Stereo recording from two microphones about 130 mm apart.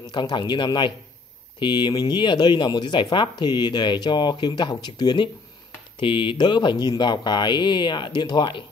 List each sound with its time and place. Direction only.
0.0 s speech: 35° left (ahead or behind)